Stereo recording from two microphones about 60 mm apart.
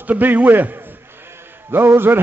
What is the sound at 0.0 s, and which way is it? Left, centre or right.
A man's voice, right.